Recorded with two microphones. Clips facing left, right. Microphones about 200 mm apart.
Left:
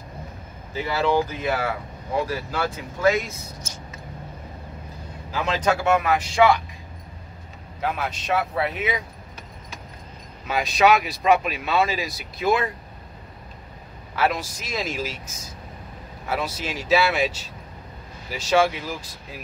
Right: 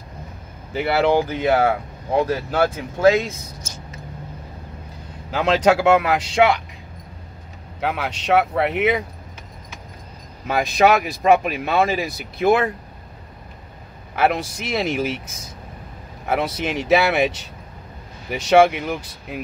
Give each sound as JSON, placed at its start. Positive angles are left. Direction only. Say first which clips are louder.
{"t": 0.7, "sound": "speech", "louder": "right 4 dB", "side_deg": -75}
{"t": 2.6, "sound": "speech", "louder": "right 6 dB", "side_deg": -85}
{"t": 5.3, "sound": "speech", "louder": "right 6 dB", "side_deg": -90}
{"t": 7.8, "sound": "speech", "louder": "right 3 dB", "side_deg": -70}
{"t": 10.4, "sound": "speech", "louder": "right 3 dB", "side_deg": -50}
{"t": 14.1, "sound": "speech", "louder": "right 4 dB", "side_deg": -60}